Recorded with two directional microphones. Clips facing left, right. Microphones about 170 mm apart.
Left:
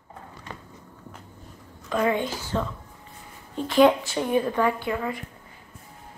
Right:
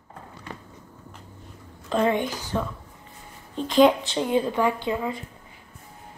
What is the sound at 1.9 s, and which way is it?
Speech, 25° right (ahead or behind).